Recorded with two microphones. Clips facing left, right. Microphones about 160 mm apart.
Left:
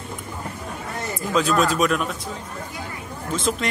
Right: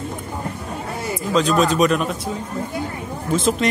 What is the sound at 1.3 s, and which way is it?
Speech, 5° left (ahead or behind).